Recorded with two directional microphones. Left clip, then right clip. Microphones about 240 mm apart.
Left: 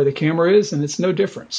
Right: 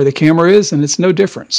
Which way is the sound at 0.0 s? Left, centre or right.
Right.